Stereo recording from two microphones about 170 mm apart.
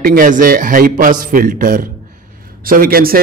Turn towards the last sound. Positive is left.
turn(degrees=-60)  # may be behind; listen again after turning